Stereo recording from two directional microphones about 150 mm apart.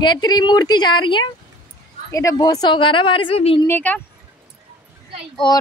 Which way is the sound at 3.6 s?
10° left (ahead or behind).